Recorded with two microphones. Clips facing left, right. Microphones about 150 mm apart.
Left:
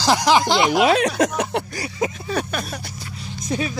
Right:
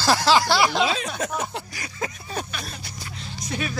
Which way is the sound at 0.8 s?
70° left (ahead or behind).